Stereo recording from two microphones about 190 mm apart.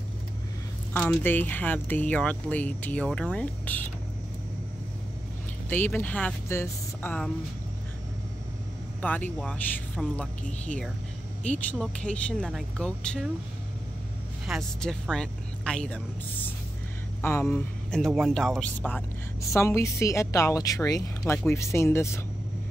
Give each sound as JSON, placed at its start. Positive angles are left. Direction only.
{"t": 0.9, "sound": "speech", "side_deg": 10}
{"t": 5.7, "sound": "speech", "side_deg": 10}
{"t": 9.0, "sound": "speech", "side_deg": 10}
{"t": 11.4, "sound": "speech", "side_deg": 5}
{"t": 14.4, "sound": "speech", "side_deg": 0}